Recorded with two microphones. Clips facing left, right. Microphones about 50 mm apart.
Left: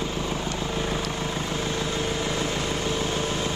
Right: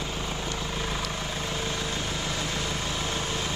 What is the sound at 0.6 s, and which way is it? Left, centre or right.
Vehicle, centre.